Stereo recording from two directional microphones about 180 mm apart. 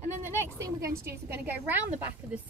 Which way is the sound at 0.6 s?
20° right (ahead or behind).